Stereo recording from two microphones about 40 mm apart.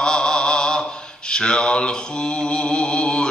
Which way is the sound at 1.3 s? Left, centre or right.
Left.